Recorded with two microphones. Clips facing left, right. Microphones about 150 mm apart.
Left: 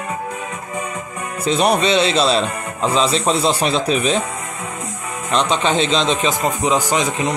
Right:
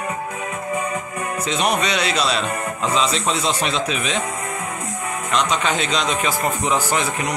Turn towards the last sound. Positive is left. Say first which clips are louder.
# left 3 dB
turn(degrees=20)  # may be behind; listen again after turning